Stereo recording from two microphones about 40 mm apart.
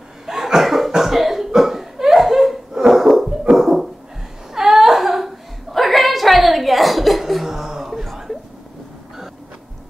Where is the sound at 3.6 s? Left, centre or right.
Centre.